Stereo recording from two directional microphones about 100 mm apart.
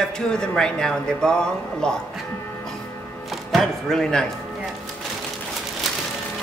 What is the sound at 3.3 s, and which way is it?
Speech, centre (ahead or behind).